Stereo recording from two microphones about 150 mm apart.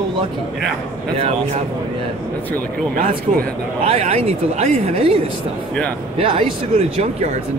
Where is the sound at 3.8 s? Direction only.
40° right (ahead or behind).